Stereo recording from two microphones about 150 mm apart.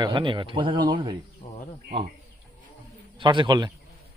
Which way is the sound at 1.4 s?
55° left (ahead or behind).